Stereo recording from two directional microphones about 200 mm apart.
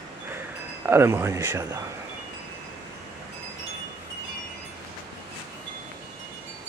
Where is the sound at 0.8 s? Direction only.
10° right (ahead or behind).